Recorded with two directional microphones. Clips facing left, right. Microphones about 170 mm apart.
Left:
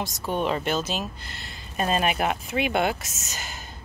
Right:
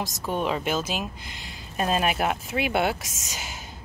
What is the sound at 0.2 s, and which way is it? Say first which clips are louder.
Speech: left 1 dB; centre (ahead or behind).